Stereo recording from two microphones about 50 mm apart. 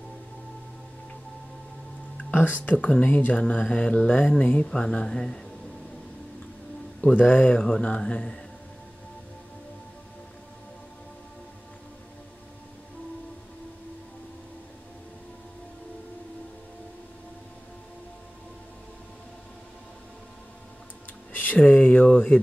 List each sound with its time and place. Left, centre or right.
2.6 s speech: left
4.6 s speech: centre
7.0 s speech: left
7.6 s speech: centre
21.3 s speech: left